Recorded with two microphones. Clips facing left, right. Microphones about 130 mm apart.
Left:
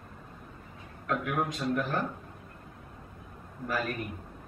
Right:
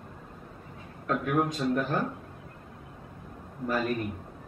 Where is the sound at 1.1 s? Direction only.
Centre (ahead or behind).